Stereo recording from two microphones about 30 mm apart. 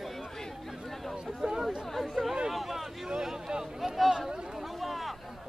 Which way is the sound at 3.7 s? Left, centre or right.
Centre.